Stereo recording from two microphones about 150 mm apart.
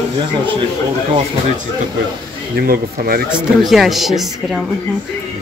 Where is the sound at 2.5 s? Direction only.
80° right.